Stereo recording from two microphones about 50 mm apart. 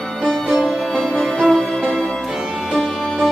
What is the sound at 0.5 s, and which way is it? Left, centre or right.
Music, centre.